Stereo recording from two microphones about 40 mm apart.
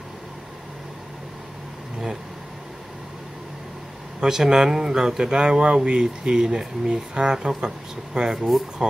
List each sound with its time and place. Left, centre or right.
4.2 s speech: centre